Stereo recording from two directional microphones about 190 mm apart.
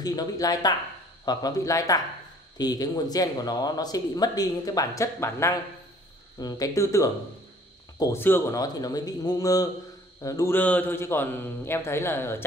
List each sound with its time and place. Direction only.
0.0 s a man's voice: 20° left (ahead or behind)